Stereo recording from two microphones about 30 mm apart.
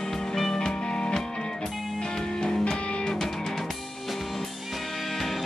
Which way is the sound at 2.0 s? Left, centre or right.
Left.